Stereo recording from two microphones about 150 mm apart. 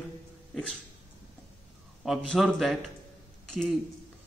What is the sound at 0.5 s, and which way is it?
Dog, centre (ahead or behind).